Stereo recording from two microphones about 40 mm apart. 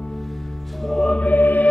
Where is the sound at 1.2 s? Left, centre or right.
Left.